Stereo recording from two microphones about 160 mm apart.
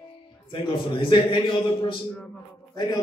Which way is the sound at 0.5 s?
30° left (ahead or behind).